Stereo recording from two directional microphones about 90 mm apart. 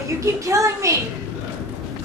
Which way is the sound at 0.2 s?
35° right (ahead or behind).